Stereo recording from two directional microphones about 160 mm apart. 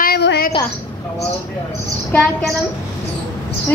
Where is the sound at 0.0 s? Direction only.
85° left.